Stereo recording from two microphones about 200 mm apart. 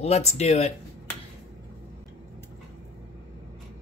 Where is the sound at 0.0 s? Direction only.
30° left (ahead or behind).